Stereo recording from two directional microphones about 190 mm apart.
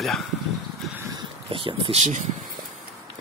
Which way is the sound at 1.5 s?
25° right (ahead or behind).